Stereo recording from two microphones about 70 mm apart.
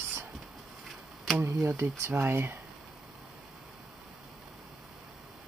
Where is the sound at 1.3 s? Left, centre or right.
Right.